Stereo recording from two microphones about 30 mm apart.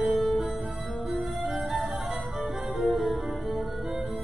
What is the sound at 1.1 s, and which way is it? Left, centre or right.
Music, centre.